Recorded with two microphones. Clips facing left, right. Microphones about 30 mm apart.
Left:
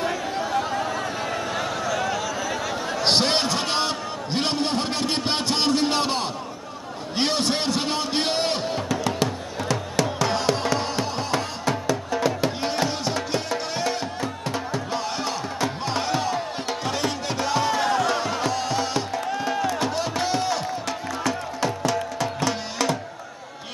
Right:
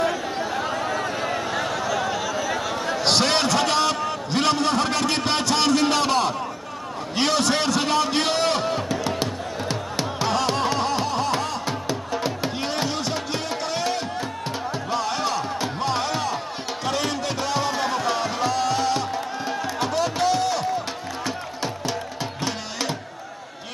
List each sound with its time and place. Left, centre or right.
0.0 s a sound: centre
3.0 s a sound: centre
9.0 s music: right
10.5 s music: centre
11.6 s music: centre
17.0 s music: centre
19.4 s music: centre
20.0 s a sound: centre
21.2 s music: centre